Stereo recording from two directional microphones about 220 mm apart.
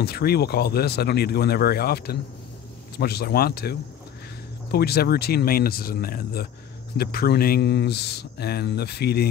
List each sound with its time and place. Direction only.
0.0 s speech: 45° left (ahead or behind)